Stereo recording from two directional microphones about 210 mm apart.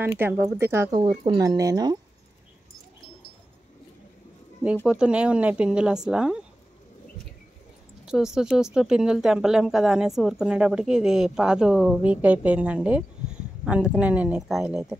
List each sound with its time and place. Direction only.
0.0 s speech: 10° right (ahead or behind)
4.8 s speech: 5° right (ahead or behind)
8.0 s speech: centre (ahead or behind)